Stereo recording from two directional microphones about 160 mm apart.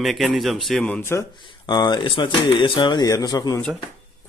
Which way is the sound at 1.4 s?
30° left (ahead or behind).